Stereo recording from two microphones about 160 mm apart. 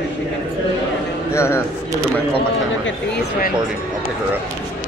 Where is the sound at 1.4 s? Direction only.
15° left (ahead or behind).